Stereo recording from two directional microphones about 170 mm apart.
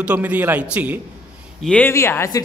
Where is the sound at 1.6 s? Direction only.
10° left (ahead or behind).